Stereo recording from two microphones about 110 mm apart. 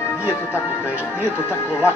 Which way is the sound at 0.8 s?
15° right (ahead or behind).